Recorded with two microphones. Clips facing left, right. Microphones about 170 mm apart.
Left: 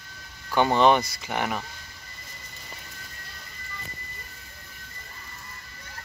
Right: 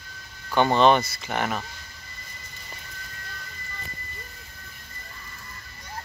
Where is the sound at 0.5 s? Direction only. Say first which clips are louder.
Right 1 dB; 15° left (ahead or behind).